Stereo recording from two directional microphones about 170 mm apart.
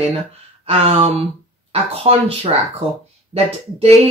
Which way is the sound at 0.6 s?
35° right (ahead or behind).